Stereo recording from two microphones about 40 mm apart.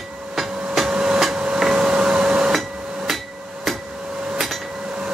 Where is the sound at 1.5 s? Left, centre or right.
Centre.